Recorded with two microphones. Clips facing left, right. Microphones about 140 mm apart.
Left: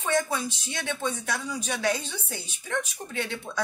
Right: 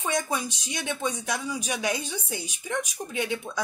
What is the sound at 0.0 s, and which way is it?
Speech, 15° right (ahead or behind).